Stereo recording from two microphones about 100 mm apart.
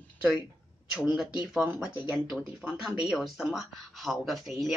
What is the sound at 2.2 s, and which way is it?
Speech, 5° right (ahead or behind).